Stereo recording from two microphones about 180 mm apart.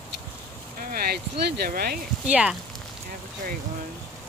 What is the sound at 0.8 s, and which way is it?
Speech, 55° right (ahead or behind).